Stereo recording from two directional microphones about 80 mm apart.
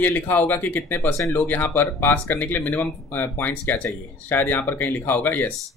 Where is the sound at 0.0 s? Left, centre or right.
Left.